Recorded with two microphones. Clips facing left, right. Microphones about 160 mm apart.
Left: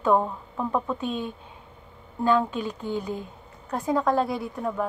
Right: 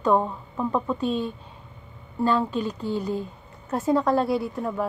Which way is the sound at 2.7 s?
40° right (ahead or behind).